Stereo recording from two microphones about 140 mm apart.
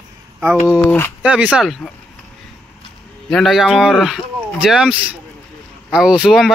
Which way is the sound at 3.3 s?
Centre (ahead or behind).